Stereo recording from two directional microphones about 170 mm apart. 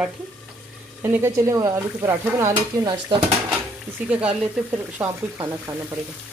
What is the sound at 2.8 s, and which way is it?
Speech, 25° right (ahead or behind).